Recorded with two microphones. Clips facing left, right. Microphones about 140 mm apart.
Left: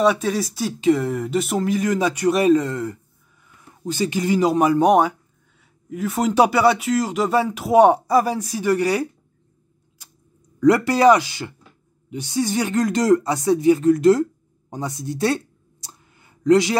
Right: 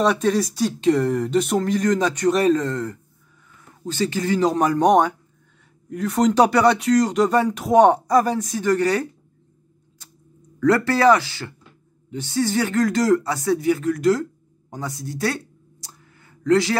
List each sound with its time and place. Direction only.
0.0 s speech: 5° left (ahead or behind)
10.6 s speech: 15° left (ahead or behind)
14.7 s a sound: 20° left (ahead or behind)